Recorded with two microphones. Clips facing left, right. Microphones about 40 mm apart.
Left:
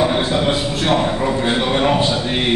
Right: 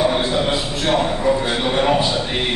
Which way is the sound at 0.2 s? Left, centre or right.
Centre.